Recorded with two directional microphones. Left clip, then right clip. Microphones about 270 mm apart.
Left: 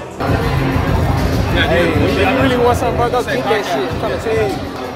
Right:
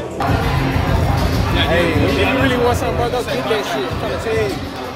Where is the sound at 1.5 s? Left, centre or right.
Centre.